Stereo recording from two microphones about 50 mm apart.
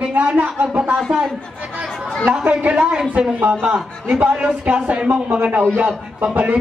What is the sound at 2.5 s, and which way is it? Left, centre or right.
A man's voice, right.